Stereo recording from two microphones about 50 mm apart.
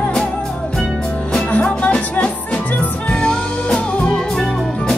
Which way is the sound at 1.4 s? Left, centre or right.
Left.